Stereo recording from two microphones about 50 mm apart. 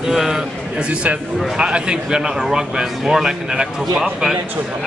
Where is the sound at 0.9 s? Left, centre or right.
Right.